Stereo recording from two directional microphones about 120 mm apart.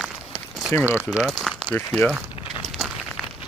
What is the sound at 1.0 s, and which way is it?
Crumpling, 10° right (ahead or behind).